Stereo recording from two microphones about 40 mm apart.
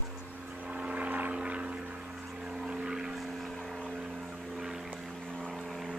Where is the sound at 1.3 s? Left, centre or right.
Right.